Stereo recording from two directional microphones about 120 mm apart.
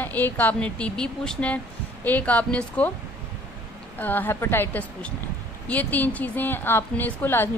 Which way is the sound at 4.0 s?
15° left (ahead or behind).